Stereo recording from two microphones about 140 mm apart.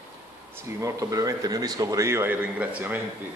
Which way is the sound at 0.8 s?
25° right (ahead or behind).